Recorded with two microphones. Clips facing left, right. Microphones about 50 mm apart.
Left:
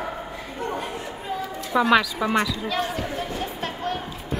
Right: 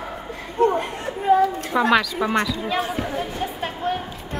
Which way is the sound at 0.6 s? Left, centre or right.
Right.